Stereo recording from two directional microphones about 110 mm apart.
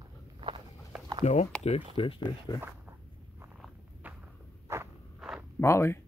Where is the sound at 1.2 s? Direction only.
90° left.